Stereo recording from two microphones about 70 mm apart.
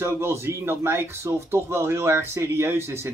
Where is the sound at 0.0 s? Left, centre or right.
Right.